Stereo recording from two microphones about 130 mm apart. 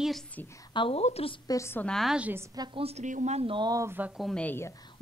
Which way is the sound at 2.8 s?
70° right (ahead or behind).